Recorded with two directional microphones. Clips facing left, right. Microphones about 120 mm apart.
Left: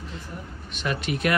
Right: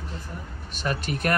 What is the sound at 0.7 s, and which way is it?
Speech, 40° right (ahead or behind).